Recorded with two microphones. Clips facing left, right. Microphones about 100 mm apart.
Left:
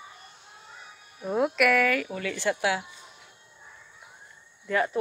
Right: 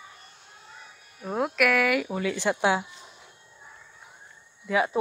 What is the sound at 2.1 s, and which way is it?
Speech, 20° right (ahead or behind).